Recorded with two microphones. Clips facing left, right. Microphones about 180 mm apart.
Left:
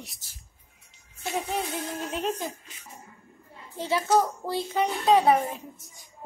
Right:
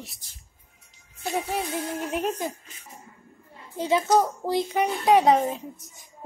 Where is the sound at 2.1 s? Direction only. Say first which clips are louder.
Right 2 dB; 10° right (ahead or behind).